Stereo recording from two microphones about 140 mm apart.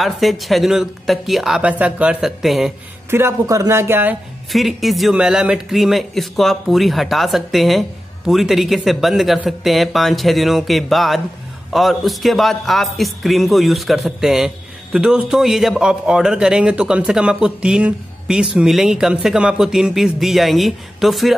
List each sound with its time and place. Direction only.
0.0 s a man's voice: centre (ahead or behind)
3.1 s speech: 15° right (ahead or behind)
4.5 s a man's voice: centre (ahead or behind)